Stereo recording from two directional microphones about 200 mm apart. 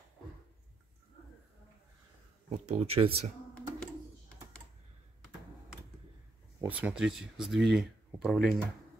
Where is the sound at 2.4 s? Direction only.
30° right (ahead or behind).